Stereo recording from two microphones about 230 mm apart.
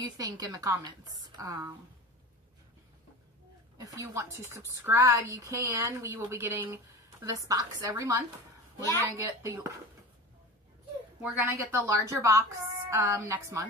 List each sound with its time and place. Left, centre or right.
0.2 s a woman's voice: centre
3.7 s a woman's voice: centre
11.2 s a woman's voice: centre